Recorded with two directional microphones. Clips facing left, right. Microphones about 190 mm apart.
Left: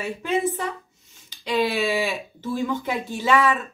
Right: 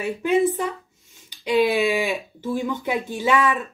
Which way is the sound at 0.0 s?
15° right (ahead or behind).